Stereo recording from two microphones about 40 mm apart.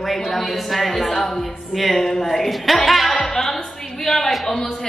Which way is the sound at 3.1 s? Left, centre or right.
Left.